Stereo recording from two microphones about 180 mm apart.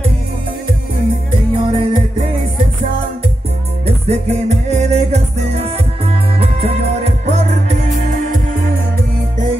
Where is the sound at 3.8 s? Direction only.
35° right (ahead or behind).